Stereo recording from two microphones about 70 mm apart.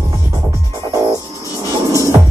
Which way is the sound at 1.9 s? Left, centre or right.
Right.